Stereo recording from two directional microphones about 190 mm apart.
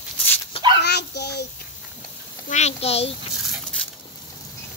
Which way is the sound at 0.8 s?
60° left (ahead or behind).